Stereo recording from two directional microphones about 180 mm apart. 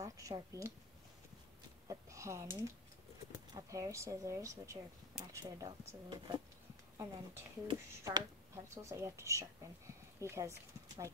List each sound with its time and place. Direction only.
0.0 s speech: 20° right (ahead or behind)
1.9 s speech: 15° right (ahead or behind)